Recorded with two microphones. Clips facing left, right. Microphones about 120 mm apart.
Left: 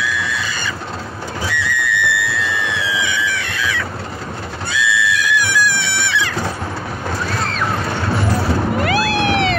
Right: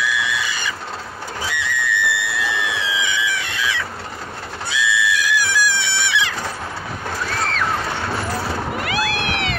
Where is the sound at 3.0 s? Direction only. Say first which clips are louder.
Left 2 dB; 20° right (ahead or behind).